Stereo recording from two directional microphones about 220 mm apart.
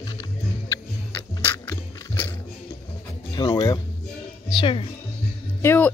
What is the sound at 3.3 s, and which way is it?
A woman's voice, 20° left (ahead or behind).